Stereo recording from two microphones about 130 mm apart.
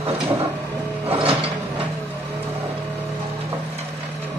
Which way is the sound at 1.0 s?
50° right (ahead or behind).